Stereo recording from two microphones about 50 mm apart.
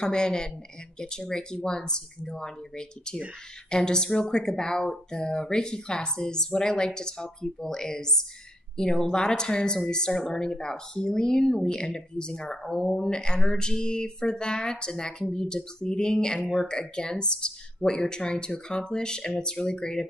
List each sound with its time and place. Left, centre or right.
0.0 s speech: centre
3.7 s speech: centre